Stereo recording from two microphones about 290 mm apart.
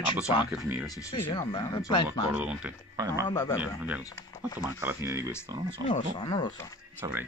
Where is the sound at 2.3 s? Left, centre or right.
Centre.